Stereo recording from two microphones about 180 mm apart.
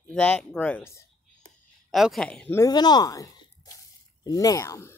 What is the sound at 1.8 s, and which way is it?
Speech, centre (ahead or behind).